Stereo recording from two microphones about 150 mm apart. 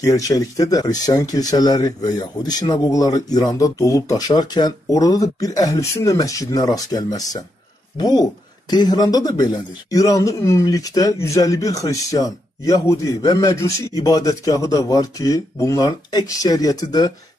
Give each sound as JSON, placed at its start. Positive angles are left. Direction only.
{"t": 0.0, "sound": "speech", "side_deg": 25}